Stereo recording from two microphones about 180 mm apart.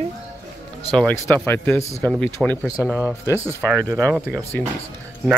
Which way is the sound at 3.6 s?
Centre (ahead or behind).